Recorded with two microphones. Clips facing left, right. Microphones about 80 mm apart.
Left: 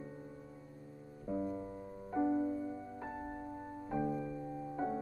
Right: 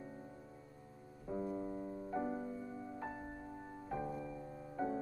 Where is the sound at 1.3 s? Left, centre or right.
Centre.